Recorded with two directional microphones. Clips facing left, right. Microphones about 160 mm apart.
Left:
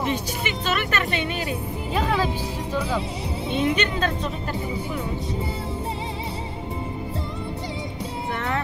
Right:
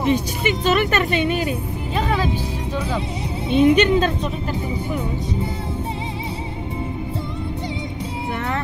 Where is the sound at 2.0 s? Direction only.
5° left (ahead or behind).